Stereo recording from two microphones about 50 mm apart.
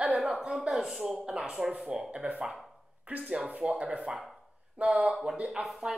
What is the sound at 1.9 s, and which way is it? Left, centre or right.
Speech, right.